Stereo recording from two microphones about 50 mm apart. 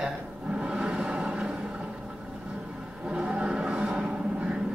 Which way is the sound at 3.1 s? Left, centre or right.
Right.